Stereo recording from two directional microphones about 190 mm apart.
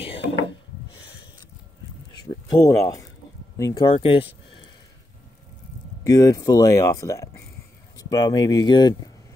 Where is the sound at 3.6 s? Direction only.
25° left (ahead or behind).